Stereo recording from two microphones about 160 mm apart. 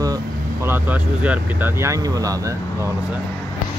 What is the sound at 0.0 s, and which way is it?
Speech, 20° right (ahead or behind).